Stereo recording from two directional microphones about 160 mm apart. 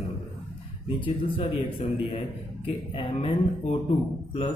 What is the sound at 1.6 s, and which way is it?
A man's voice, 45° left (ahead or behind).